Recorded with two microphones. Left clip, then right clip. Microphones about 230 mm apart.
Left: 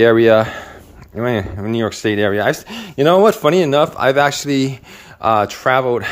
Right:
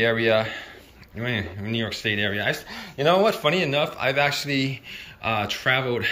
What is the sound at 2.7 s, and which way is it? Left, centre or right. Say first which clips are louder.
Speech: left 7 dB; left.